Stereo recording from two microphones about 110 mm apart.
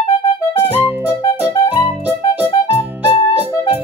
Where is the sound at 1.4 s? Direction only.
15° right (ahead or behind).